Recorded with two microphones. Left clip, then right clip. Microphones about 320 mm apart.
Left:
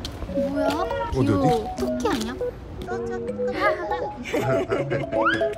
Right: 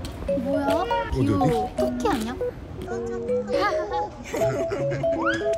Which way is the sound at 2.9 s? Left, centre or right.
Left.